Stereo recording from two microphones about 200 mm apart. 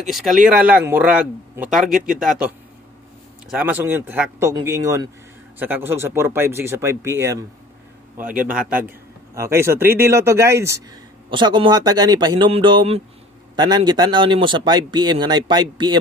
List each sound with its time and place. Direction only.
0.0 s a man's voice: centre (ahead or behind)
8.5 s a man's voice: 5° right (ahead or behind); by 16.0 s 25° right (ahead or behind)